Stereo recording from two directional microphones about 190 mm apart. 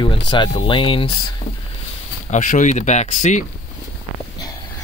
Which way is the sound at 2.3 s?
40° left (ahead or behind).